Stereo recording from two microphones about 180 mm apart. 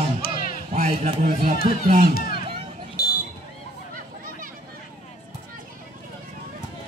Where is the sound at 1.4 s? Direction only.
55° right (ahead or behind).